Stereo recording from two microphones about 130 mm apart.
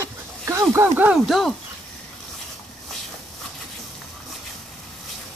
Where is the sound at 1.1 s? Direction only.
Centre (ahead or behind).